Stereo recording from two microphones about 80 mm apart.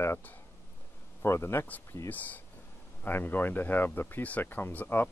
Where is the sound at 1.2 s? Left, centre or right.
Left.